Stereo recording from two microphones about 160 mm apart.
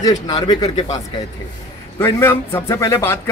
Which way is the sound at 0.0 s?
25° left (ahead or behind).